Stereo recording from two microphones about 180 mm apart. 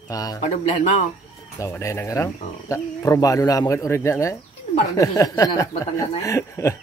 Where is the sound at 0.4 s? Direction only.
35° left (ahead or behind).